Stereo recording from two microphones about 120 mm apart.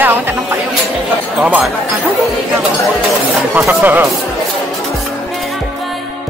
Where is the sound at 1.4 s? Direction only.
10° right (ahead or behind).